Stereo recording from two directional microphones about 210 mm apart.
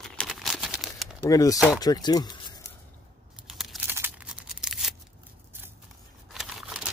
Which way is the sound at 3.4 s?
Centre (ahead or behind).